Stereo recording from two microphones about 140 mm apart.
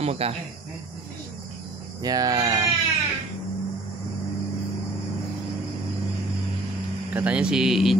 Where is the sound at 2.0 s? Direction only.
25° right (ahead or behind).